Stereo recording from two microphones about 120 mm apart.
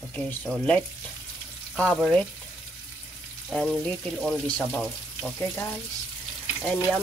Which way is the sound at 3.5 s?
5° left (ahead or behind).